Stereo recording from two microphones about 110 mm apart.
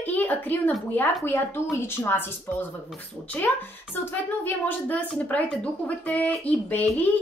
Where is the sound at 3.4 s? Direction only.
15° left (ahead or behind).